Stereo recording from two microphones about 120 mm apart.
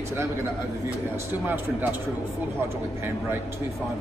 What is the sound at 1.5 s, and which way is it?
Speech, 15° right (ahead or behind).